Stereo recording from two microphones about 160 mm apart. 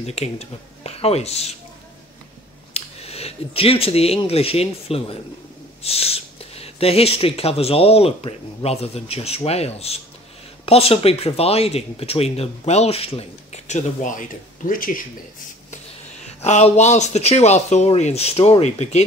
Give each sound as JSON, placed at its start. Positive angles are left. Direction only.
{"t": 0.0, "sound": "speech", "side_deg": 40}
{"t": 2.7, "sound": "speech", "side_deg": 40}
{"t": 16.3, "sound": "speech", "side_deg": 45}